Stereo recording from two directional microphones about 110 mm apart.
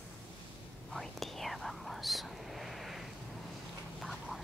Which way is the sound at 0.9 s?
Centre (ahead or behind).